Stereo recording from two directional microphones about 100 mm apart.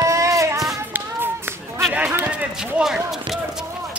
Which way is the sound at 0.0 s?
30° right (ahead or behind).